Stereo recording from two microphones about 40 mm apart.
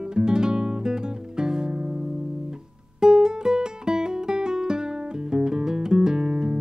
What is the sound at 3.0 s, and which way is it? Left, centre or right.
Music, centre.